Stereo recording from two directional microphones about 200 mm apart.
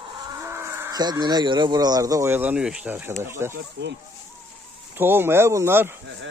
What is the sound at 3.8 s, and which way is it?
Speech, 55° right (ahead or behind).